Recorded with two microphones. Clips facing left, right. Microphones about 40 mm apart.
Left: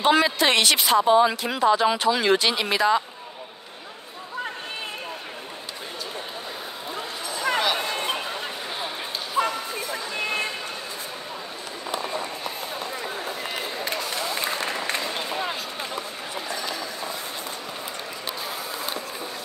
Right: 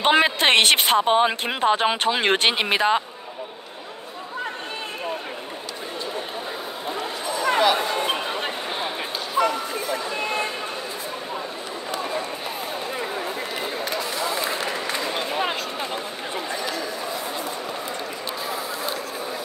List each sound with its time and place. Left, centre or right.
0.0 s a woman's voice: right
7.4 s a sound: centre
9.4 s music: right
9.9 s vehicle: centre